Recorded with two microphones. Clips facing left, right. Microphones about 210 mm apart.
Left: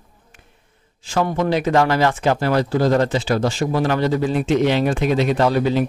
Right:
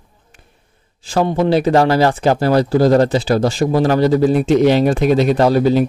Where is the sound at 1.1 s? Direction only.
30° right (ahead or behind).